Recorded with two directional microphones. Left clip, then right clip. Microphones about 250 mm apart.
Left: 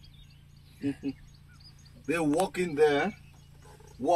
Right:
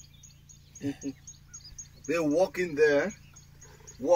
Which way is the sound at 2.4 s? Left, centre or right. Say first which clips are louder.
Right 1 dB; left.